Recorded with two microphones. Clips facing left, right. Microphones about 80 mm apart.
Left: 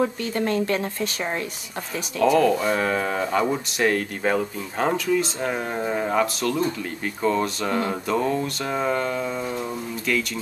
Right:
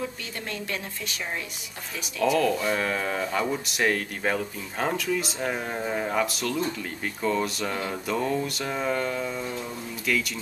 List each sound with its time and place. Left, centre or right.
0.0 s a woman's voice: left
2.2 s speech: centre
5.8 s speech: centre
6.1 s speech: centre